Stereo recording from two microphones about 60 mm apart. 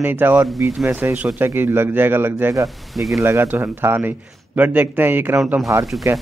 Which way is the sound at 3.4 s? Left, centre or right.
Right.